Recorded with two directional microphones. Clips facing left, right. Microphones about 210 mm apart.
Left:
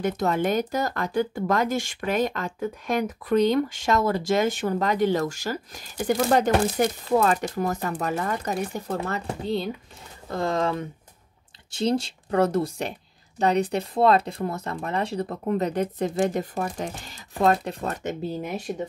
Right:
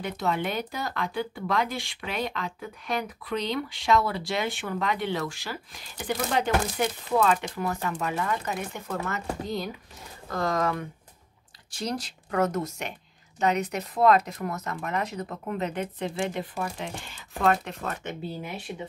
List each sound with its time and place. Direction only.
0.0 s speech: 45° left (ahead or behind)